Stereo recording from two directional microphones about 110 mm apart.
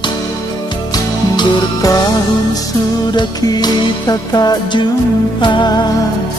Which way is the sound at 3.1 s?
40° left (ahead or behind).